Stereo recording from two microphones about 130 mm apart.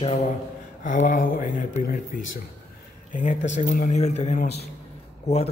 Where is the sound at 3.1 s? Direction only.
80° left.